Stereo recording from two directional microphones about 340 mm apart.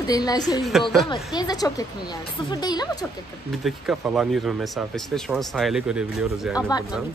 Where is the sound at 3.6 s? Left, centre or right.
Centre.